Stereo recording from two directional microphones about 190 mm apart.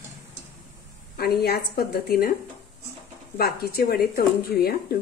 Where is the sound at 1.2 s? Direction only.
55° left (ahead or behind).